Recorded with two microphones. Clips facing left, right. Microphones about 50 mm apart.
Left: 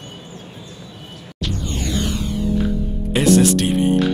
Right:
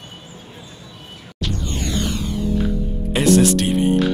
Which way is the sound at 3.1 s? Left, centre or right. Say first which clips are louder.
Even; centre.